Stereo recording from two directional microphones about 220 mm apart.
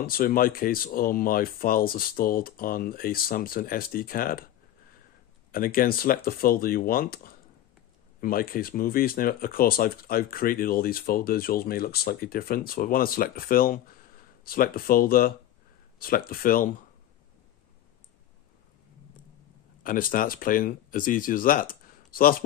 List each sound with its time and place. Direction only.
0.0 s speech: 40° left (ahead or behind)
5.5 s speech: 40° left (ahead or behind)
19.8 s speech: 40° left (ahead or behind)